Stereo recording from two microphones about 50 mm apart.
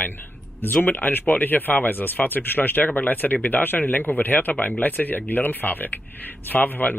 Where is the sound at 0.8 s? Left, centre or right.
Left.